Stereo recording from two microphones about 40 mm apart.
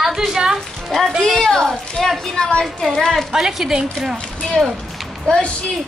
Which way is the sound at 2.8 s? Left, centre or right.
Centre.